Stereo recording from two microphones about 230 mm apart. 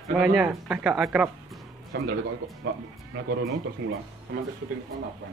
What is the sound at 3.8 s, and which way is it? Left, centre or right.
Speech, right.